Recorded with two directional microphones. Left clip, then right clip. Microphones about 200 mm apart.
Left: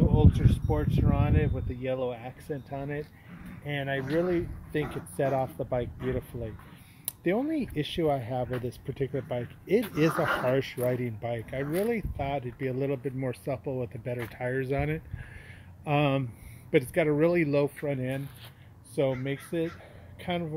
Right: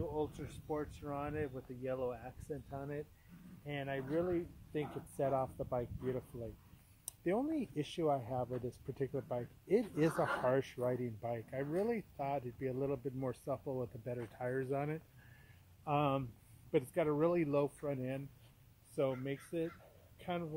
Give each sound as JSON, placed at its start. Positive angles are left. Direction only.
{"t": 0.1, "sound": "speech", "side_deg": -5}